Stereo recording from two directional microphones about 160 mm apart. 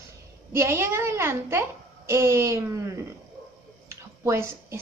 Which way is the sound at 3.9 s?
15° right (ahead or behind).